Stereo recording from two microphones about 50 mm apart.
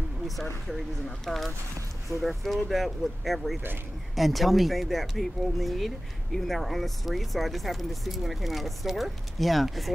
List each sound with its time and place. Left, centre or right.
0.7 s speech: centre